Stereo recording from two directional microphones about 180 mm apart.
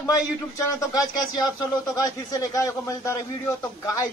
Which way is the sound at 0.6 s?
15° left (ahead or behind).